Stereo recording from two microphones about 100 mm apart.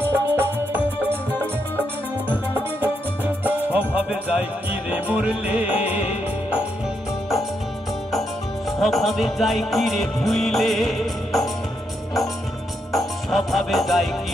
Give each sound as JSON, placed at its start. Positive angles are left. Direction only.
{"t": 0.0, "sound": "music", "side_deg": -25}
{"t": 3.4, "sound": "music", "side_deg": -15}
{"t": 8.1, "sound": "music", "side_deg": 0}
{"t": 12.9, "sound": "music", "side_deg": 0}